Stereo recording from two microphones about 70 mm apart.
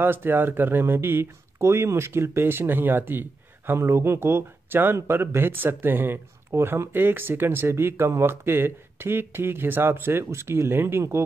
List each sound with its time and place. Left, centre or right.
0.0 s speech: right